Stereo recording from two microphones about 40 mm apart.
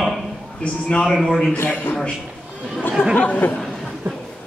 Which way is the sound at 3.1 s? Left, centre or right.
Left.